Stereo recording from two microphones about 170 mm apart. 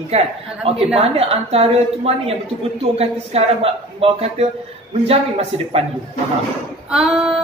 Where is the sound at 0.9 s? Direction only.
35° right (ahead or behind).